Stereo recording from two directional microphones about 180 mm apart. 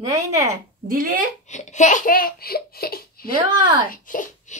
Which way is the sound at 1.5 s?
40° left (ahead or behind).